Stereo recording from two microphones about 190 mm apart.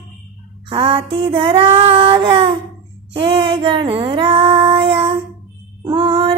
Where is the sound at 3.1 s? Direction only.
30° right (ahead or behind).